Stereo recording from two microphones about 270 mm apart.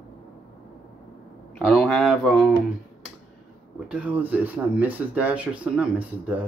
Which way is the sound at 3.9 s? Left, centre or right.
Centre.